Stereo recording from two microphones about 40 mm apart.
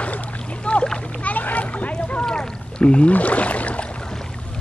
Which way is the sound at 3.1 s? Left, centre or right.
Left.